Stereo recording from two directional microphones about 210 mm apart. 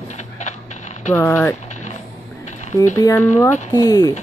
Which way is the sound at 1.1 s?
10° left (ahead or behind).